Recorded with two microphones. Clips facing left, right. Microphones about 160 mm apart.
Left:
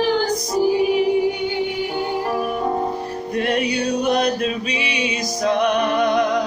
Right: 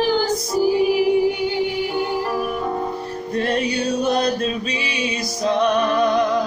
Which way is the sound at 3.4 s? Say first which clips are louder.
Even; 15° left (ahead or behind).